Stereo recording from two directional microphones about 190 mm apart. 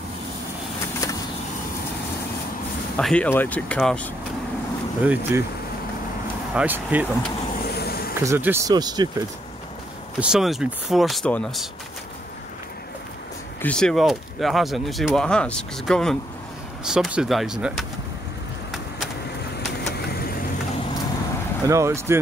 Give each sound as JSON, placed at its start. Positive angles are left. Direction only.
{"t": 1.0, "sound": "vehicle", "side_deg": 15}
{"t": 3.0, "sound": "speech", "side_deg": 5}
{"t": 5.0, "sound": "speech", "side_deg": -10}
{"t": 6.5, "sound": "speech", "side_deg": -10}
{"t": 7.7, "sound": "a sound", "side_deg": 55}
{"t": 8.2, "sound": "speech", "side_deg": -15}
{"t": 10.2, "sound": "speech", "side_deg": 0}
{"t": 13.6, "sound": "speech", "side_deg": 5}
{"t": 21.6, "sound": "speech", "side_deg": -15}